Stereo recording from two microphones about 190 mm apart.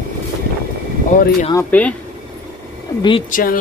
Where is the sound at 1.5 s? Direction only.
10° left (ahead or behind).